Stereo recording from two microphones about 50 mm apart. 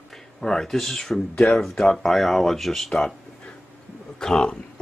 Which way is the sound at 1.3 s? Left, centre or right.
Left.